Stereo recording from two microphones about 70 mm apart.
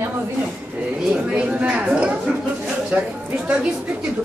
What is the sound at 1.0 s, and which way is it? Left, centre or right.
Speech, centre.